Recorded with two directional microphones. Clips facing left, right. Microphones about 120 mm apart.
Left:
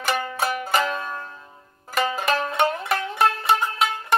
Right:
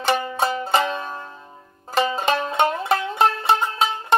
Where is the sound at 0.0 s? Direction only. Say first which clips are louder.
Right 3 dB; 25° right (ahead or behind).